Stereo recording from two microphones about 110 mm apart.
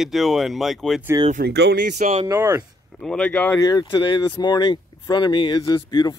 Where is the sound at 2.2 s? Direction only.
25° right (ahead or behind).